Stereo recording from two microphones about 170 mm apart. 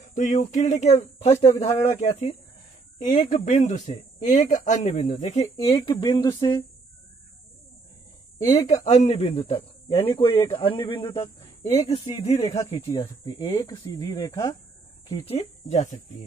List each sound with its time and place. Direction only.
0.0 s a man's voice: 45° left (ahead or behind); by 6.6 s 20° left (ahead or behind)
8.8 s a man's voice: 40° left (ahead or behind)
13.0 s speech: 20° left (ahead or behind)
15.2 s speech: 40° left (ahead or behind)